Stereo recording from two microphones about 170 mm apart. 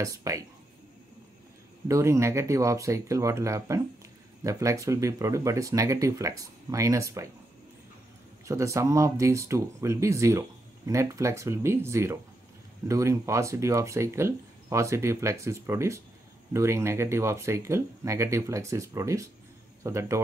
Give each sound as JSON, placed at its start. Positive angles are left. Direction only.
{"t": 0.0, "sound": "speech", "side_deg": -20}
{"t": 1.9, "sound": "speech", "side_deg": -15}
{"t": 8.5, "sound": "speech", "side_deg": -20}